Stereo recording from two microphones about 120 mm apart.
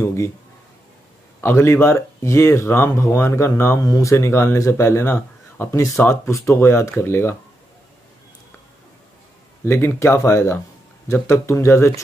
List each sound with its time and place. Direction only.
0.0 s speech: 25° left (ahead or behind)
1.4 s speech: 20° left (ahead or behind)
9.7 s speech: 20° left (ahead or behind)